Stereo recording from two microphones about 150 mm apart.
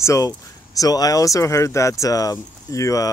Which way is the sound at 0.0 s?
20° left (ahead or behind).